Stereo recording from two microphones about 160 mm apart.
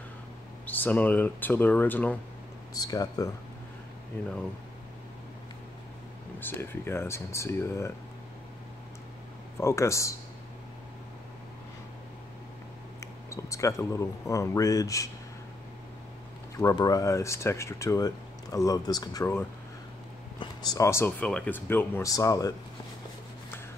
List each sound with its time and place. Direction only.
0.7 s speech: 10° left (ahead or behind)
2.7 s speech: 25° left (ahead or behind)
6.4 s speech: 15° left (ahead or behind)
9.6 s speech: 20° left (ahead or behind)
13.0 s speech: 20° left (ahead or behind)
16.5 s speech: 20° left (ahead or behind)